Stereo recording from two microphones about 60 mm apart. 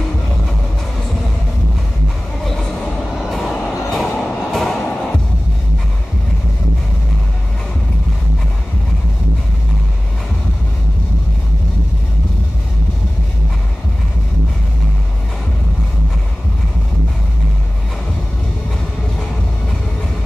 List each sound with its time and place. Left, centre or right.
3.3 s music: centre